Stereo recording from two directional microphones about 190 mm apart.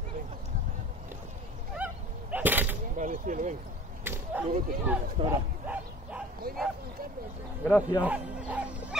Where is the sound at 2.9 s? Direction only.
45° right (ahead or behind).